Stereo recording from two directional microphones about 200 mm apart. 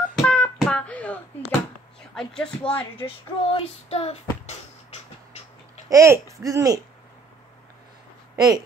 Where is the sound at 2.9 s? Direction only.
25° left (ahead or behind).